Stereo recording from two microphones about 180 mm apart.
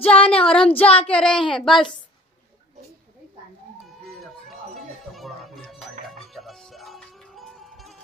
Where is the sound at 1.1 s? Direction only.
5° left (ahead or behind).